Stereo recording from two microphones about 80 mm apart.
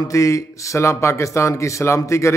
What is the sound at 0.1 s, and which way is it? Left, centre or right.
Mantra, left.